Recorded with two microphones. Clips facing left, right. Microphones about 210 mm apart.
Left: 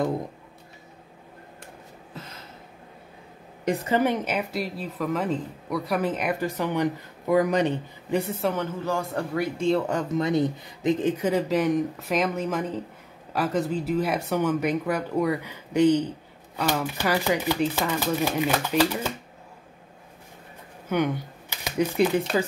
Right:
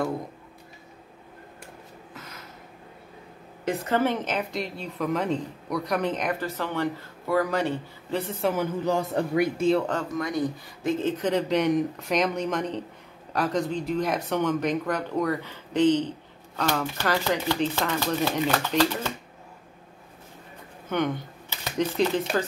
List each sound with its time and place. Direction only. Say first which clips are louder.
2.1 s gasp: left 3 dB; 30° left (ahead or behind)
3.6 s speech: left 1 dB; 15° left (ahead or behind)
8.4 s speech: right 1 dB; centre (ahead or behind)
8.8 s a man's voice: right 3 dB; 20° right (ahead or behind)
9.6 s speech: left 1 dB; centre (ahead or behind)
10.1 s speech: left 4 dB; 25° left (ahead or behind)
20.9 s speech: left 2 dB; 10° left (ahead or behind)